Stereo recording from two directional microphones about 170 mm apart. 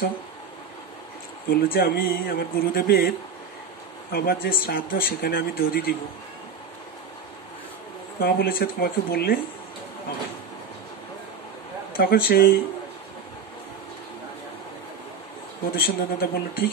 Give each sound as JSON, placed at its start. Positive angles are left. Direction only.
{"t": 1.5, "sound": "speech", "side_deg": 65}
{"t": 8.2, "sound": "speech", "side_deg": 60}
{"t": 12.0, "sound": "speech", "side_deg": 60}
{"t": 15.7, "sound": "speech", "side_deg": 60}